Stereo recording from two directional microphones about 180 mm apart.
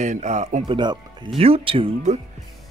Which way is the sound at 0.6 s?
25° right (ahead or behind).